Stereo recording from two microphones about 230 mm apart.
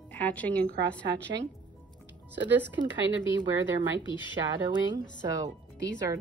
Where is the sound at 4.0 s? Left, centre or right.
Centre.